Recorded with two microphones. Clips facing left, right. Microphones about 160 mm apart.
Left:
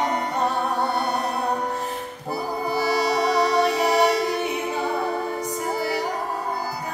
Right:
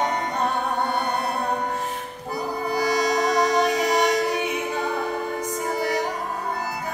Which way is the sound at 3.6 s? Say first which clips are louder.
Left 1 dB; 30° left (ahead or behind).